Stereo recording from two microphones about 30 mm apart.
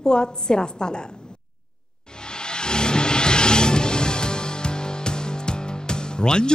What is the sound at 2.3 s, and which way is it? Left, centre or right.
Music, left.